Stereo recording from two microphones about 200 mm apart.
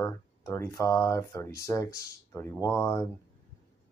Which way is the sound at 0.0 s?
15° left (ahead or behind).